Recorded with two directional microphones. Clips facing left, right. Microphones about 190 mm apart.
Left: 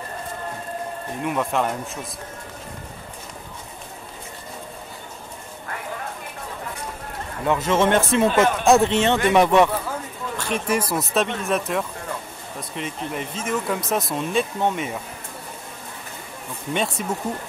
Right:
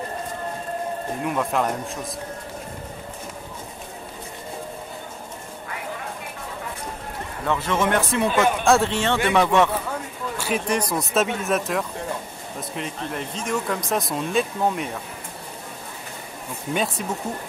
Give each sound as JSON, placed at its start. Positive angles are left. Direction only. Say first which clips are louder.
{"t": 1.2, "sound": "speech", "louder": "left 1 dB", "side_deg": 0}
{"t": 7.4, "sound": "speech", "louder": "left 3 dB", "side_deg": 20}
{"t": 10.3, "sound": "a sound", "louder": "right 1 dB", "side_deg": -5}
{"t": 10.7, "sound": "speech", "louder": "left 3 dB", "side_deg": 5}
{"t": 16.7, "sound": "speech", "louder": "even", "side_deg": 0}